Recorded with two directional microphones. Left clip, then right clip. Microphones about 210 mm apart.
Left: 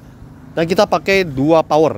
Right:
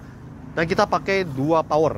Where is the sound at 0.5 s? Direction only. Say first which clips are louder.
Left 6 dB; 50° left (ahead or behind).